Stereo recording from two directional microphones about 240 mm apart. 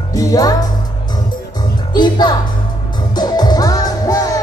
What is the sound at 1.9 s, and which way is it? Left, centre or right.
Music, centre.